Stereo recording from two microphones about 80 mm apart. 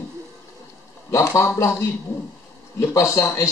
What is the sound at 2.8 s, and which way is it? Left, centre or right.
Speech, left.